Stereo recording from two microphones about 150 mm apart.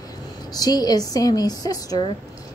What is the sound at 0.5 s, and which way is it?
Speech, 25° left (ahead or behind).